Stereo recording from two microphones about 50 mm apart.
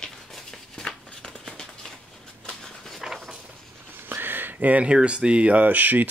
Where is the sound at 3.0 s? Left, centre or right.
Centre.